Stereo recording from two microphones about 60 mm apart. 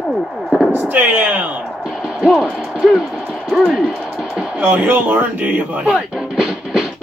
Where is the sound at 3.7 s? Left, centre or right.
Centre.